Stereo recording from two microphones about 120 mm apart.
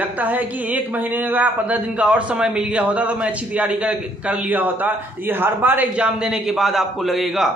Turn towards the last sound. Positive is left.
turn(degrees=0)  # may be behind; listen again after turning